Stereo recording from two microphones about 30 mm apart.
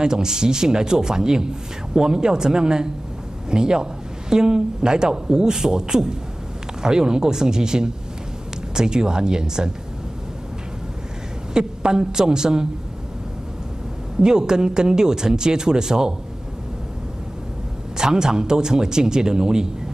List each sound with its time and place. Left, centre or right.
0.0 s speech: right
11.5 s speech: right
14.2 s speech: right
17.9 s speech: right